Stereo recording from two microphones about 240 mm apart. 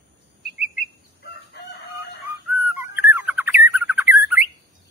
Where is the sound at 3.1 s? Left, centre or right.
Centre.